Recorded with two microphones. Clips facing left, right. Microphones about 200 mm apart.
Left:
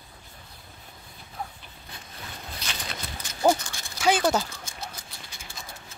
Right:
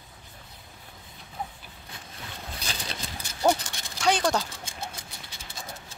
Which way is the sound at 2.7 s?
35° right (ahead or behind).